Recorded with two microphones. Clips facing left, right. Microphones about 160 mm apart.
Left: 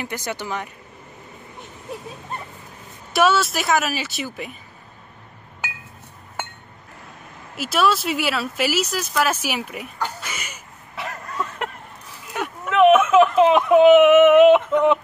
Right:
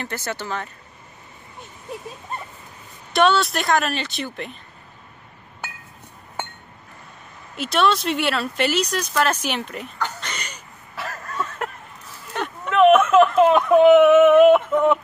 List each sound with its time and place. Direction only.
0.0 s speech: 15° left (ahead or behind)
3.1 s speech: 5° left (ahead or behind)
7.5 s speech: 5° left (ahead or behind)
12.4 s a sound: 10° left (ahead or behind)